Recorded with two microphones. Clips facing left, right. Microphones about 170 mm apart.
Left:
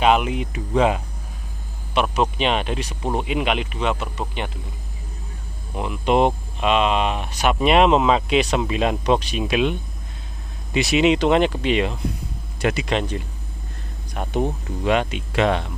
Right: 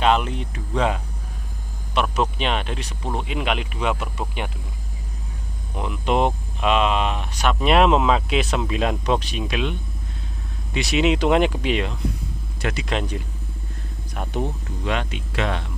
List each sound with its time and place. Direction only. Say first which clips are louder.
0.0 s speech: left 2 dB; 10° left (ahead or behind); by 4.5 s 5° right (ahead or behind)
5.8 s speech: left 3 dB; 5° left (ahead or behind)
11.1 s speech: left 1 dB; 10° right (ahead or behind)
12.6 s speech: left 5 dB; 15° left (ahead or behind)
14.4 s speech: left 7 dB; 15° left (ahead or behind)